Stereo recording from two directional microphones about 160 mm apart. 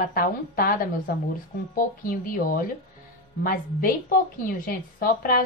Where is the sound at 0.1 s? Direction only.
65° left (ahead or behind).